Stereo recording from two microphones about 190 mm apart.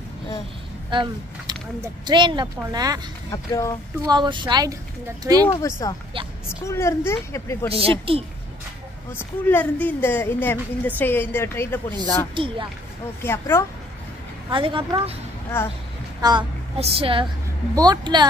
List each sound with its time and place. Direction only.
0.9 s speech: 25° right (ahead or behind)
3.3 s a woman's voice: 15° left (ahead or behind)
4.0 s speech: 25° right (ahead or behind)
5.6 s a woman's voice: 15° left (ahead or behind)
7.7 s speech: 30° right (ahead or behind)
9.1 s a woman's voice: 10° left (ahead or behind)
12.4 s speech: 25° right (ahead or behind)
13.2 s a woman's voice: 10° left (ahead or behind)
14.5 s speech: 25° right (ahead or behind)
15.5 s a woman's voice: 10° left (ahead or behind)
16.2 s a woman's voice: 25° right (ahead or behind)